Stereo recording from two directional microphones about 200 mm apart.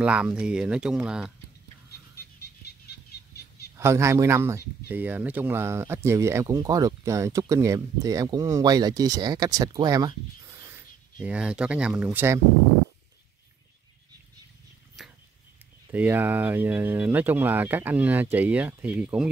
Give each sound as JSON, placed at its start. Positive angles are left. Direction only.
{"t": 0.0, "sound": "speech", "side_deg": -5}
{"t": 1.9, "sound": "a sound", "side_deg": 55}
{"t": 3.7, "sound": "speech", "side_deg": -15}
{"t": 11.2, "sound": "speech", "side_deg": -5}
{"t": 15.0, "sound": "a sound", "side_deg": 0}
{"t": 15.9, "sound": "speech", "side_deg": -10}